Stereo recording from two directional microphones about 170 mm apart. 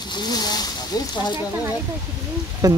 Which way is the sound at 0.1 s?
25° left (ahead or behind).